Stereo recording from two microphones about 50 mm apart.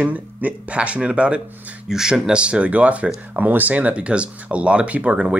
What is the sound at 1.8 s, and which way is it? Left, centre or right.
Speech, centre.